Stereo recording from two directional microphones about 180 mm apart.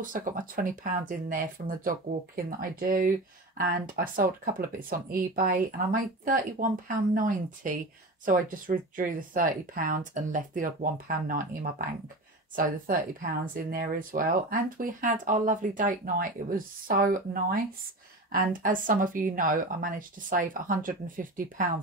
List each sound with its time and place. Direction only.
0.0 s speech: 50° right (ahead or behind)